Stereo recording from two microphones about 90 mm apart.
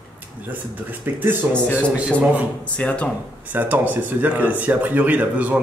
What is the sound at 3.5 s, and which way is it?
Speech, 20° right (ahead or behind).